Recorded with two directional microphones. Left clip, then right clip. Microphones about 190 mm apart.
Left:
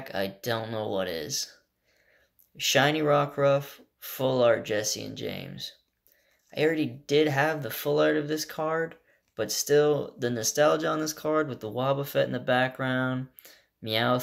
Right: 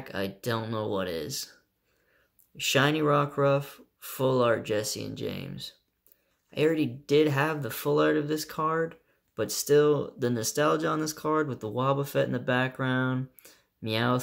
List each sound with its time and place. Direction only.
0.0 s speech: 35° right (ahead or behind)
2.5 s speech: 35° right (ahead or behind)